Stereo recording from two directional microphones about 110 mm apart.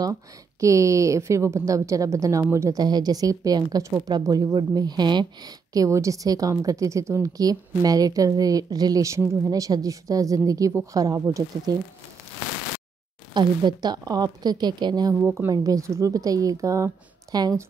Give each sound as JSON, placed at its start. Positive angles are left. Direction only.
{"t": 0.0, "sound": "speech", "side_deg": -30}
{"t": 2.8, "sound": "speech", "side_deg": -35}
{"t": 13.3, "sound": "speech", "side_deg": -40}
{"t": 15.1, "sound": "speech", "side_deg": -20}
{"t": 15.5, "sound": "speech", "side_deg": -35}